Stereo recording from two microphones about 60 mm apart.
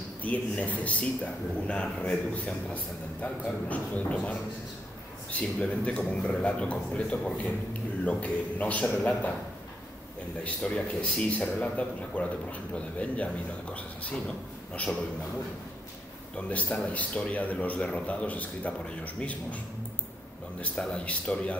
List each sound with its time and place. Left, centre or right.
0.2 s a man's voice: left
5.4 s a man's voice: centre
10.4 s a man's voice: centre
16.3 s a man's voice: left
20.7 s a man's voice: centre